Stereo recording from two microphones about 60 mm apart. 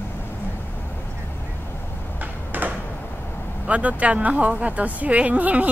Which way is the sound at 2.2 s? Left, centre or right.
Right.